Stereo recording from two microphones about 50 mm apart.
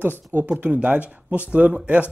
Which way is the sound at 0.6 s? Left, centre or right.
Right.